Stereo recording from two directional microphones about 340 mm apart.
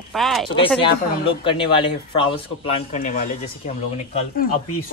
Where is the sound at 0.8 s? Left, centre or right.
Centre.